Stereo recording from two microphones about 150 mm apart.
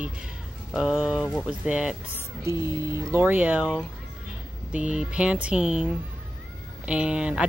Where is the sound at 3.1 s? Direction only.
10° right (ahead or behind).